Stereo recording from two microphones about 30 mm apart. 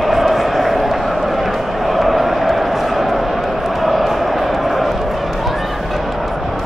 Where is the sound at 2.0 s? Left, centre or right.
Centre.